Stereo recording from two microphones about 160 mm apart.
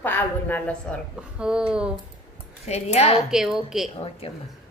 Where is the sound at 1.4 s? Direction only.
5° right (ahead or behind).